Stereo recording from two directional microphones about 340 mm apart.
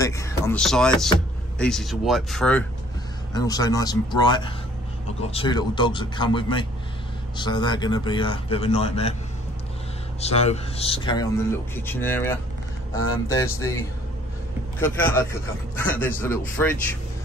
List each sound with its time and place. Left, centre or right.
0.0 s a man's voice: centre
10.2 s a man's voice: centre